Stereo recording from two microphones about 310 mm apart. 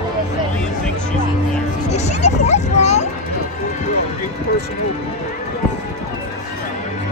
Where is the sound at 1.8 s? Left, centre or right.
Left.